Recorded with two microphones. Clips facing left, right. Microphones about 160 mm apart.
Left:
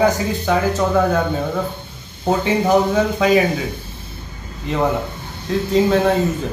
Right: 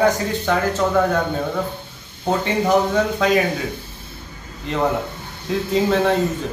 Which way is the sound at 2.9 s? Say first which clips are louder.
Left 2 dB; 5° left (ahead or behind).